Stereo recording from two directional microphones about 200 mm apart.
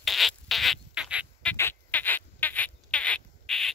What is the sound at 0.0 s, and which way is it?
Rodents, centre (ahead or behind).